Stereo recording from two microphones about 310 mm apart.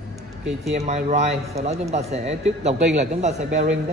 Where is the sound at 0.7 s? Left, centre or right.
Right.